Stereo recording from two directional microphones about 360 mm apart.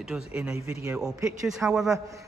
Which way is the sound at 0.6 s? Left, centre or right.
Centre.